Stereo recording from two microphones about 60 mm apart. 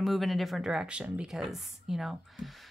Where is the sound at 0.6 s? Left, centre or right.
Centre.